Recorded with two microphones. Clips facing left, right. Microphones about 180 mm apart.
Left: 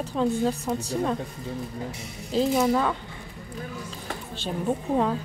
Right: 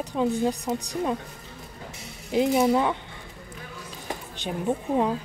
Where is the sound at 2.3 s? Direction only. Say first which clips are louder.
Right 1 dB; 15° right (ahead or behind).